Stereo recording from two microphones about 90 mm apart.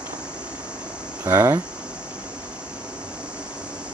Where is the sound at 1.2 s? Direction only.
30° right (ahead or behind).